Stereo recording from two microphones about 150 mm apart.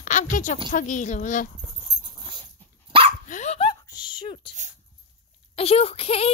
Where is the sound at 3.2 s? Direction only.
55° left (ahead or behind).